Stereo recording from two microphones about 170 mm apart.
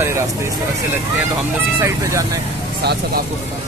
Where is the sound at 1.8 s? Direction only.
20° right (ahead or behind).